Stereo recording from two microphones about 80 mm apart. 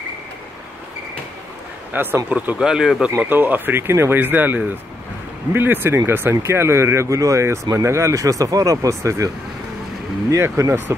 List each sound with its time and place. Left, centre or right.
2.0 s speech: right
2.3 s speech: centre
3.2 s speech: right
10.3 s speech: right